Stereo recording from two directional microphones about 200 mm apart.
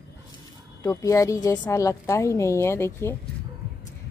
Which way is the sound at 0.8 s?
15° left (ahead or behind).